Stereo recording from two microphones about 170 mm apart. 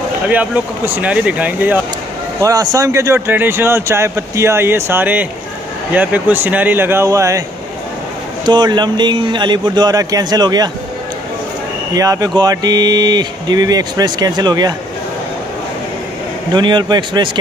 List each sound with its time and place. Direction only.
0.3 s speech: 10° right (ahead or behind)
2.4 s speech: 20° right (ahead or behind)
8.5 s speech: 25° right (ahead or behind)
11.9 s speech: 20° right (ahead or behind)
16.5 s speech: 25° right (ahead or behind)